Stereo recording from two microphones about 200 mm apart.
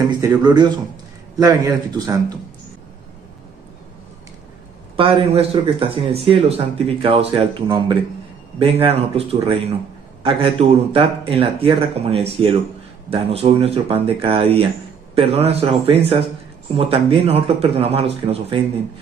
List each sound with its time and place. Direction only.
0.2 s speech: 20° right (ahead or behind)
4.9 s speech: 25° right (ahead or behind)